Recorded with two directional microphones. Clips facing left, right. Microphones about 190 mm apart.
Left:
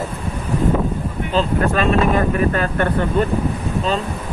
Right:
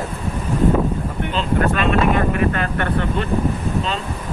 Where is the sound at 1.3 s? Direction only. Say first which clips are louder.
Left 2 dB; 45° left (ahead or behind).